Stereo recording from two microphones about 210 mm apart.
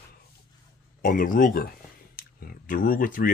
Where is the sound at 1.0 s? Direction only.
40° left (ahead or behind).